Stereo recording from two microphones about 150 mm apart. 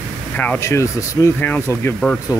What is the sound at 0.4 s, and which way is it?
Speech, 15° left (ahead or behind).